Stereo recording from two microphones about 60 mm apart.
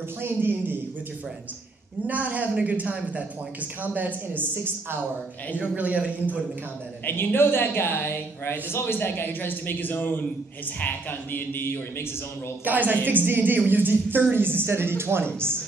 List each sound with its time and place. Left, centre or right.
0.2 s a woman's voice: right
2.0 s a man's voice: right
5.6 s a man's voice: right
7.3 s a man's voice: left
12.6 s a woman's voice: right